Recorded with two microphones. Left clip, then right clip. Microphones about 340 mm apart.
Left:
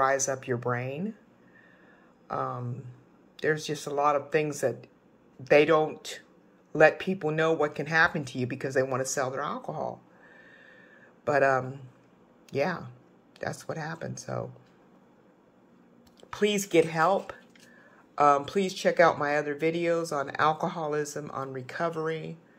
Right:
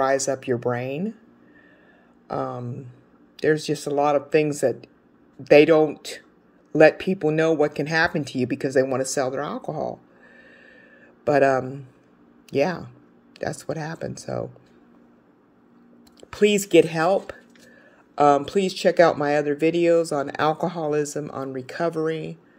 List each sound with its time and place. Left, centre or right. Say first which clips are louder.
0.0 s speech: right 4 dB; right
2.2 s speech: right 4 dB; right
9.7 s a sound: right 5 dB; right
12.4 s speech: right 6 dB; right
16.2 s speech: right 8 dB; right